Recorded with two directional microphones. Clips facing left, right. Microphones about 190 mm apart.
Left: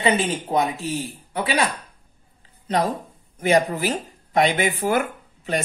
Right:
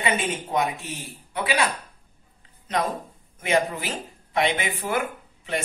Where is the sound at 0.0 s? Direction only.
35° left (ahead or behind).